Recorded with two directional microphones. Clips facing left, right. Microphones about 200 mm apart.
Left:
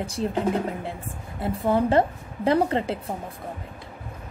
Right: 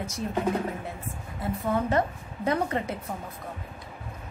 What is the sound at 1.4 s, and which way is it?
Speech, 30° left (ahead or behind).